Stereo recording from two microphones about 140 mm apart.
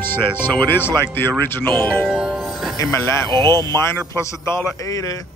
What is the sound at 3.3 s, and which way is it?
Speech, 30° right (ahead or behind).